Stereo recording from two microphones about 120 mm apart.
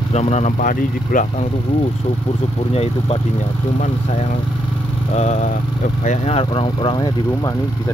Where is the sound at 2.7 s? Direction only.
55° left (ahead or behind).